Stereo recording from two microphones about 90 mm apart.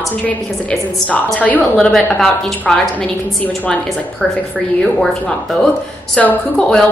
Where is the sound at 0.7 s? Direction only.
15° left (ahead or behind).